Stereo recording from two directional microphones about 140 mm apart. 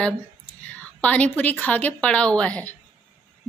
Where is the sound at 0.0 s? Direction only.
10° left (ahead or behind).